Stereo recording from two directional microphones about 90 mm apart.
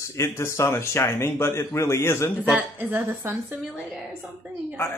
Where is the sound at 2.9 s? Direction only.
25° right (ahead or behind).